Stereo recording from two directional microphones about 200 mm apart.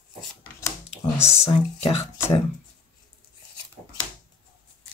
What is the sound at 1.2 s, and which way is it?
Speech, 30° left (ahead or behind).